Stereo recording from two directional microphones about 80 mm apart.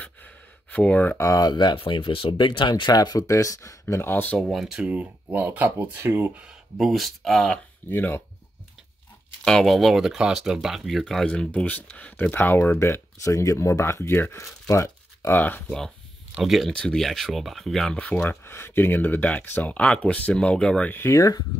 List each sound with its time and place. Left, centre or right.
0.0 s gasp: centre
1.1 s speech: left
1.5 s speech: left
3.9 s speech: left
4.4 s speech: centre
4.8 s speech: centre
6.3 s speech: centre
7.9 s speech: left
9.4 s speech: centre
11.3 s speech: centre; by 15.3 s left
15.3 s speech: left
16.4 s speech: centre
18.4 s speech: left; by 20.9 s centre
21.1 s speech: left